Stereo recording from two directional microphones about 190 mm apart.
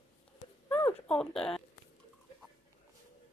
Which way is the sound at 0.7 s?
10° left (ahead or behind).